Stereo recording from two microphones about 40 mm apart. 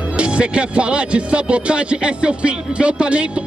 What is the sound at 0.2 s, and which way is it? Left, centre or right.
Speech, right.